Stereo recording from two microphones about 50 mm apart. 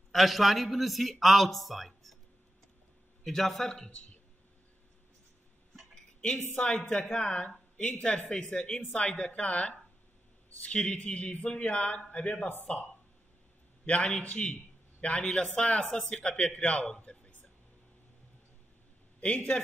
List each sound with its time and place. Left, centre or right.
0.1 s a man's voice: centre
3.3 s a man's voice: centre
6.5 s a man's voice: centre
13.8 s a man's voice: left
15.8 s a man's voice: centre
19.2 s a man's voice: left